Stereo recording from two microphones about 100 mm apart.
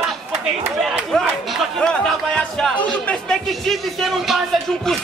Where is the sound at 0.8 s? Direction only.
Centre (ahead or behind).